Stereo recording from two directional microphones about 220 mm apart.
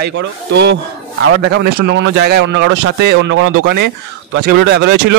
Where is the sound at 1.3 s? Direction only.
90° right.